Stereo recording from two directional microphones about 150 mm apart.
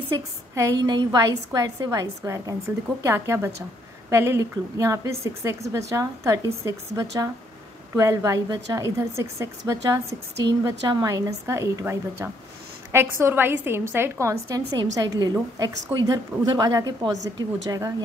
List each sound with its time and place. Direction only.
0.6 s a woman's voice: 25° right (ahead or behind)